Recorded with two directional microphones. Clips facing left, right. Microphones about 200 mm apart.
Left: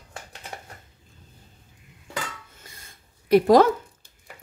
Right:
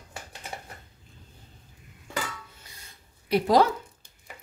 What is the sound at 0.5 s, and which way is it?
Typing, 5° right (ahead or behind).